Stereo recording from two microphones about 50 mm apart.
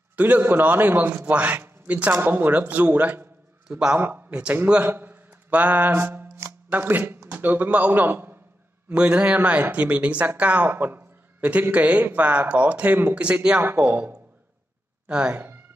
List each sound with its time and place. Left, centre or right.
0.1 s a man's voice: right
2.2 s a man's voice: right
4.8 s mantra: right
6.7 s a man's voice: right
8.8 s a man's voice: right
10.7 s a man's voice: right
13.7 s a man's voice: right
15.3 s a sound: right